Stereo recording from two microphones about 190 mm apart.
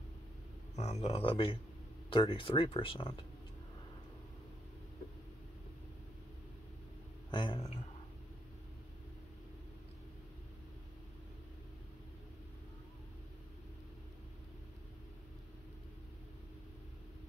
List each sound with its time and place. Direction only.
0.7 s speech: 35° left (ahead or behind)
7.2 s speech: 25° left (ahead or behind)